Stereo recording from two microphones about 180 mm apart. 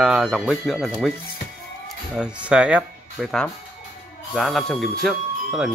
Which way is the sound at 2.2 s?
5° right (ahead or behind).